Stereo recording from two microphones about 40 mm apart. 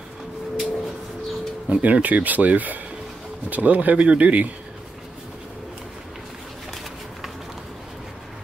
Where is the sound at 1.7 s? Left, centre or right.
Right.